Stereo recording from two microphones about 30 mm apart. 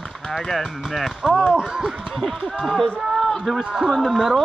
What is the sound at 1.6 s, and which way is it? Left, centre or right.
Speech, centre.